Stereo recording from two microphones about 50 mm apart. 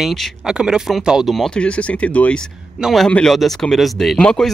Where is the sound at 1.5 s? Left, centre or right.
Left.